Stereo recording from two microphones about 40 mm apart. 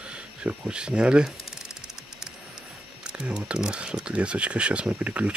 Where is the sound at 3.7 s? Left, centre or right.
Right.